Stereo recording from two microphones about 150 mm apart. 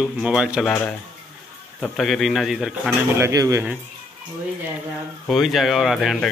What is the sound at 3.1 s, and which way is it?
Speech, 20° right (ahead or behind).